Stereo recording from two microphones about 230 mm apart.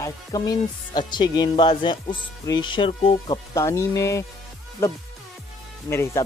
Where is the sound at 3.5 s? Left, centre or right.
Centre.